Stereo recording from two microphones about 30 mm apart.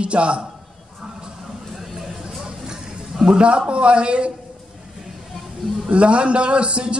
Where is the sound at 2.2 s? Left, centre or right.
Right.